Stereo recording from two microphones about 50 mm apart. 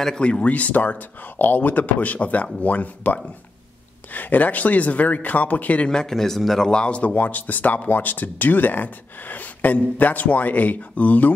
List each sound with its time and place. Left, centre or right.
0.2 s speech: left
5.9 s a man's voice: centre
6.7 s speech: left